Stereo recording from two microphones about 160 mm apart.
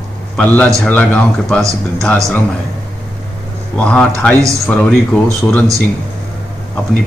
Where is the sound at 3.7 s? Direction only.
5° left (ahead or behind).